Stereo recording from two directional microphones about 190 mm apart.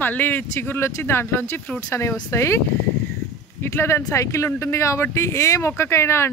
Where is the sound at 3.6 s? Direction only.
10° left (ahead or behind).